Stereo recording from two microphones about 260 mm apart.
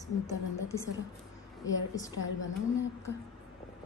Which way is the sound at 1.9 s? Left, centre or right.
Centre.